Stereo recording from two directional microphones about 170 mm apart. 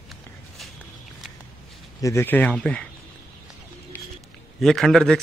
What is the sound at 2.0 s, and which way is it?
Speech, 15° left (ahead or behind).